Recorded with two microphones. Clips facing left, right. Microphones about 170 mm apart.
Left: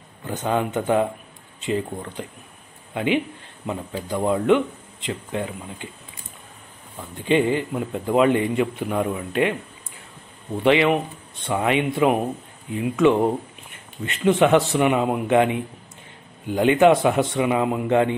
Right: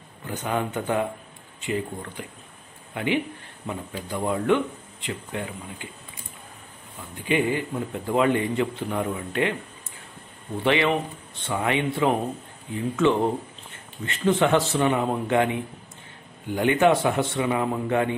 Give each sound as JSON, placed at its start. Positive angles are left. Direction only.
{"t": 0.3, "sound": "a man's voice", "side_deg": 20}
{"t": 7.2, "sound": "a man's voice", "side_deg": 25}
{"t": 10.6, "sound": "a man's voice", "side_deg": 20}